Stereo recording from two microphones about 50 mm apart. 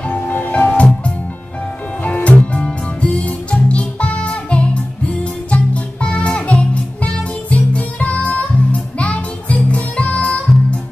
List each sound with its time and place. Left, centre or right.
0.0 s music: left
2.0 s music: left